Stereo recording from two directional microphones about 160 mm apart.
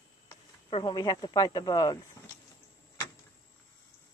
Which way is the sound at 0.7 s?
25° left (ahead or behind).